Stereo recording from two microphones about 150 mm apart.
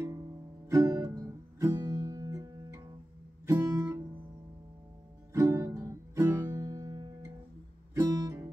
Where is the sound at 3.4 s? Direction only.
20° right (ahead or behind).